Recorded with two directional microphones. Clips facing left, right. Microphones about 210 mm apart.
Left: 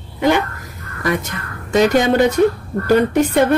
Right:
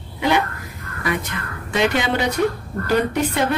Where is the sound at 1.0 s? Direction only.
40° left (ahead or behind).